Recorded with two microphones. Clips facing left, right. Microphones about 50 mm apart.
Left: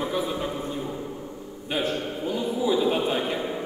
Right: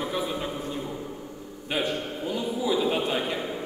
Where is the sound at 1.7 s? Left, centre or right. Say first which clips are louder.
Left 1 dB; centre.